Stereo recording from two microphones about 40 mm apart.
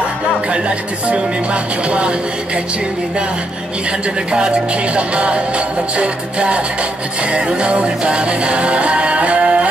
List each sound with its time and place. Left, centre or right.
0.5 s music: right
4.3 s music: right